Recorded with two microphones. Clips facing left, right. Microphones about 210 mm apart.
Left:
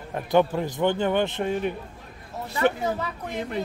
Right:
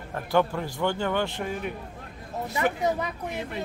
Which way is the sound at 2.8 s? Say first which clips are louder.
Right 1 dB; 15° right (ahead or behind).